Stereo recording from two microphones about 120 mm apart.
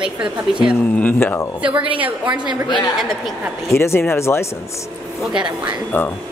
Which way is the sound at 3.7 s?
20° left (ahead or behind).